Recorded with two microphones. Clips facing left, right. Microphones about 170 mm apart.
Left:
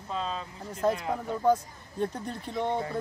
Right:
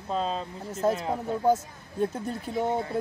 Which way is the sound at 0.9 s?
25° right (ahead or behind).